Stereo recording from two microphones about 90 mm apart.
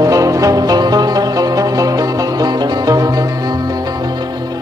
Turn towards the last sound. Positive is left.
turn(degrees=-40)  # may be behind; listen again after turning